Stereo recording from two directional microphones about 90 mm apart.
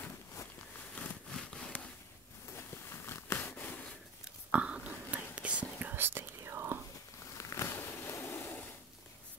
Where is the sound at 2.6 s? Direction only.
25° left (ahead or behind).